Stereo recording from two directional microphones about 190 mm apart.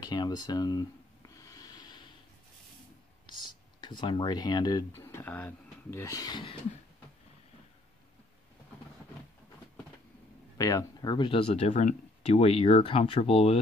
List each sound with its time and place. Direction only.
0.0 s a sound: 20° left (ahead or behind)
4.0 s speech: 25° left (ahead or behind)
10.6 s speech: 15° left (ahead or behind)